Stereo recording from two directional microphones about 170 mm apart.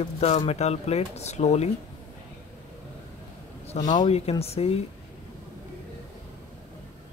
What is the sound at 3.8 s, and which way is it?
Speech, 25° left (ahead or behind).